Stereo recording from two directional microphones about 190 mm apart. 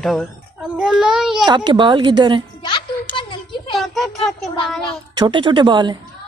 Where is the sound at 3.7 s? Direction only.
Centre (ahead or behind).